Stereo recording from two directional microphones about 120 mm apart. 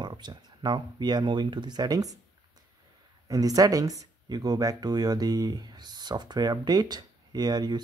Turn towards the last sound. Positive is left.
turn(degrees=-35)  # may be behind; listen again after turning